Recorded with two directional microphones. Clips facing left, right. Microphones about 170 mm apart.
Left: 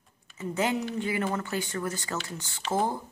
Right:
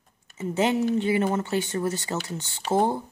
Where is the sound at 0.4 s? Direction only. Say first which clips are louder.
Right 5 dB; 25° right (ahead or behind).